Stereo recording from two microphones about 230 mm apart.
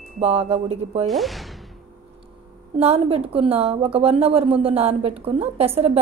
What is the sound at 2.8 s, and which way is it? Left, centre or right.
A woman's voice, right.